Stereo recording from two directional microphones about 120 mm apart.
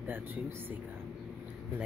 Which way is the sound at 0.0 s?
15° right (ahead or behind).